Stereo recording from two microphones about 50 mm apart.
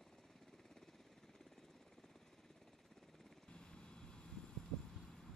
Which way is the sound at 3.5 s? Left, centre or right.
Centre.